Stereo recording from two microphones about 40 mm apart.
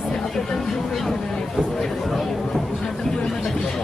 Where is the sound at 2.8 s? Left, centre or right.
Centre.